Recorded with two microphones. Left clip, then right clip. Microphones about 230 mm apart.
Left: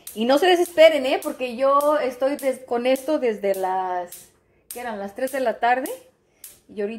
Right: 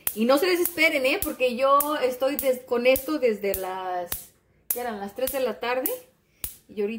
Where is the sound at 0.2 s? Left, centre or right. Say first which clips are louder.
Left 4 dB; centre.